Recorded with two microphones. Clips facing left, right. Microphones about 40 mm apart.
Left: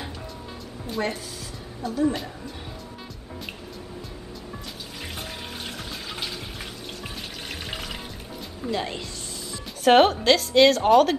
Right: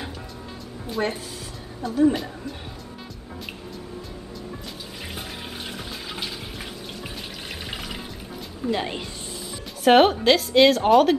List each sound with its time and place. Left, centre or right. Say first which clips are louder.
0.9 s a woman's voice: right 2 dB; centre
5.7 s water: right 1 dB; centre
8.6 s speech: right 2 dB; centre
9.8 s a woman's voice: right 1 dB; centre